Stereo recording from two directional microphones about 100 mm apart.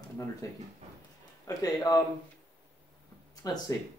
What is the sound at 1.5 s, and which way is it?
Speech, 35° left (ahead or behind).